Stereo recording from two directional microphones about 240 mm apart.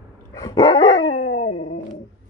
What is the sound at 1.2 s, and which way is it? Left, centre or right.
Dog, left.